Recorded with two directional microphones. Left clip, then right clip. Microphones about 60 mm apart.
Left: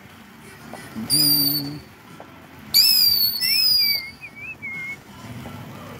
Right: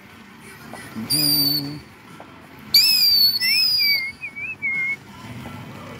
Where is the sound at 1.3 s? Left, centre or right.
Left.